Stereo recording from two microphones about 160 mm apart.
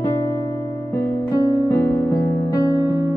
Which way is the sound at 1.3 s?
20° left (ahead or behind).